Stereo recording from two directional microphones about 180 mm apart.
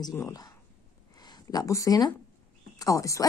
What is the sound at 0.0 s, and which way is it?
Speech, 20° left (ahead or behind).